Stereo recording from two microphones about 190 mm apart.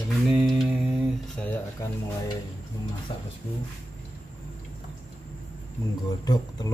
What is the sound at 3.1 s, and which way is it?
Speech, 25° left (ahead or behind).